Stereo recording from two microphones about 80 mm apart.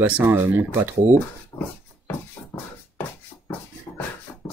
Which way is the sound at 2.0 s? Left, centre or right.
Left.